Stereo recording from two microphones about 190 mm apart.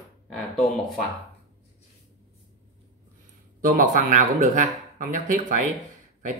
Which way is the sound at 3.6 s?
45° right (ahead or behind).